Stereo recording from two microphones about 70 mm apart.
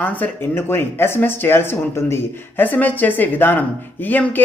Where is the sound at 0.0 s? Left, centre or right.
Left.